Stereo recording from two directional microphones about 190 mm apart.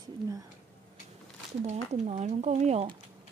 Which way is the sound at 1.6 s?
35° right (ahead or behind).